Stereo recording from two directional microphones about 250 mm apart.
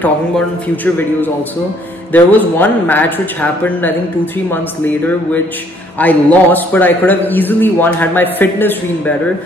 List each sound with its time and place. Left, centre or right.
0.8 s a man's voice: centre